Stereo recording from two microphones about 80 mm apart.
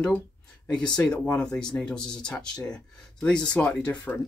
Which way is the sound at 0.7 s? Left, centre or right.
Centre.